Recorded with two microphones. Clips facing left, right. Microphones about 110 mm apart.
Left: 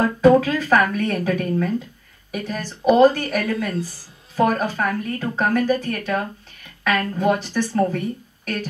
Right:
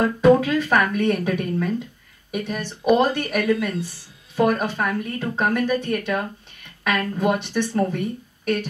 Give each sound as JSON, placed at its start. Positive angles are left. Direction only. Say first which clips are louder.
{"t": 0.0, "sound": "a woman's voice", "louder": "left 1 dB", "side_deg": 35}